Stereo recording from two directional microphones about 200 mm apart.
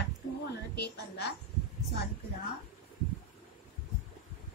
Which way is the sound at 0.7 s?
55° left (ahead or behind).